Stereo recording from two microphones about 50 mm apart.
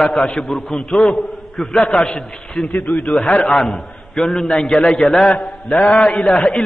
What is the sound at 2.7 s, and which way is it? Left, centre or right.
Speech, left.